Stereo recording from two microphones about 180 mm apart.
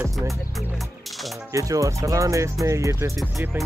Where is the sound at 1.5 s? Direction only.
20° right (ahead or behind).